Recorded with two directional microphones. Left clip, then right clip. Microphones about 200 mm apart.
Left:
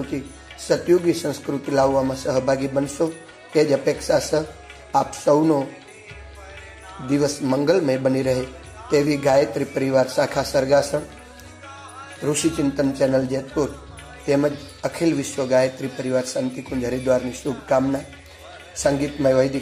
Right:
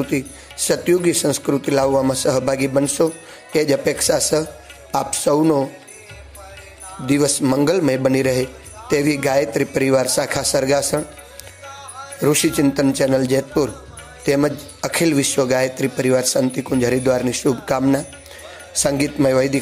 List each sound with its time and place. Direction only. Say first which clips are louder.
0.7 s a man's voice: right 1 dB; 30° right (ahead or behind)
7.1 s a man's voice: right 4 dB; 30° right (ahead or behind)
12.2 s a man's voice: right 5 dB; 35° right (ahead or behind)